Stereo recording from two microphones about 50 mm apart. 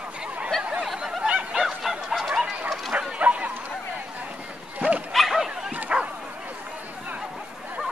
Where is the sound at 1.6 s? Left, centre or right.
Centre.